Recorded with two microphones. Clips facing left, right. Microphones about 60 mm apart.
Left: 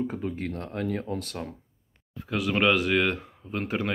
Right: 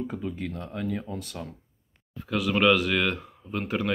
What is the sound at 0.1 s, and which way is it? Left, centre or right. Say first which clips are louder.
Speech: left 1 dB; left.